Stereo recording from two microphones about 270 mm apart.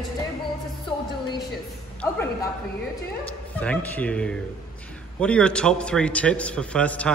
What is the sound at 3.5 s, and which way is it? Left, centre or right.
A man's voice, centre.